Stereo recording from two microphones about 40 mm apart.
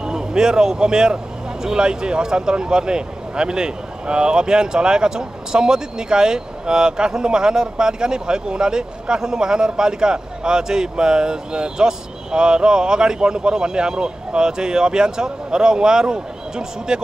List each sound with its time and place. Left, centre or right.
0.0 s speech: centre